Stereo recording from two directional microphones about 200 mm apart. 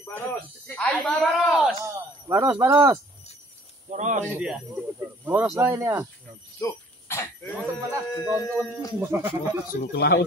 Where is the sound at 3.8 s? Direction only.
35° right (ahead or behind).